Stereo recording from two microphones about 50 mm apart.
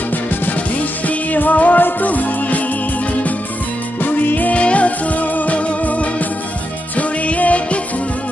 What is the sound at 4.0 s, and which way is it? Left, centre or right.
Music, left.